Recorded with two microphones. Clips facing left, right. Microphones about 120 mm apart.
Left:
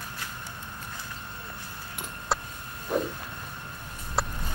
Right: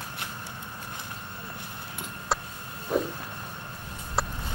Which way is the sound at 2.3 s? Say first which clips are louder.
Even; centre (ahead or behind).